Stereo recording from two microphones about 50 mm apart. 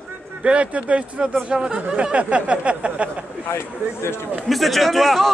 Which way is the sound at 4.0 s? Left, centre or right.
Left.